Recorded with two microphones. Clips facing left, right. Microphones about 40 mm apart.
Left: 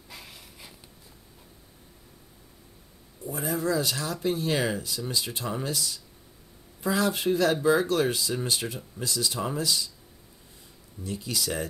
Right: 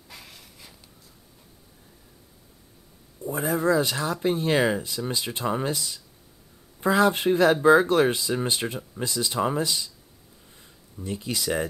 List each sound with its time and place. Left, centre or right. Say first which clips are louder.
0.1 s a sound: even; centre
3.3 s speech: right 5 dB; right
11.0 s speech: right 2 dB; right